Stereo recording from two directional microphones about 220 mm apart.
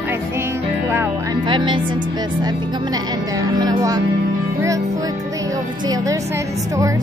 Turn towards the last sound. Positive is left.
turn(degrees=-15)  # may be behind; listen again after turning